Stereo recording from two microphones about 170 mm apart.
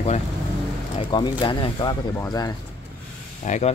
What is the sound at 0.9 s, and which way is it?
Speech, 25° left (ahead or behind).